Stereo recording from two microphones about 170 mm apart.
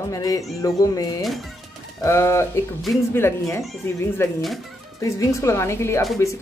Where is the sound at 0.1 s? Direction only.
20° left (ahead or behind).